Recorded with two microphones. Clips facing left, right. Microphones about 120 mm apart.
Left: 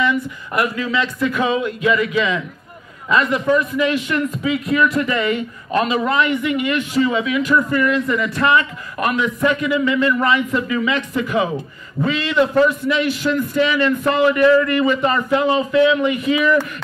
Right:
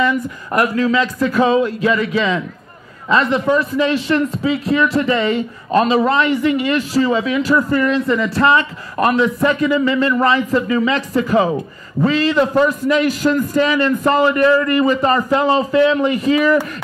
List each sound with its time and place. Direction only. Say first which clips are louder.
0.0 s a man's voice: right 2 dB; 40° right (ahead or behind)